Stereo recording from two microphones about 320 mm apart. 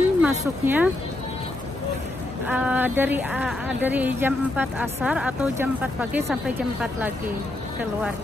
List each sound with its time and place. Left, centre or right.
0.2 s speech: centre
2.4 s speech: centre